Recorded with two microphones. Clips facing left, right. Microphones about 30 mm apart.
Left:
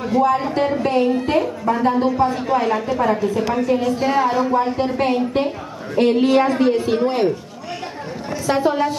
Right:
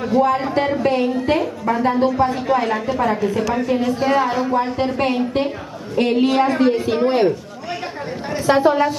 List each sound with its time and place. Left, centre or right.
0.2 s a woman's voice: centre
7.0 s speech: right
8.5 s speech: right